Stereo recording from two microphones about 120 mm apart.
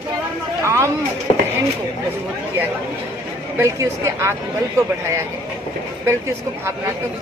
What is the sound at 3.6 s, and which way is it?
Speech, 25° right (ahead or behind).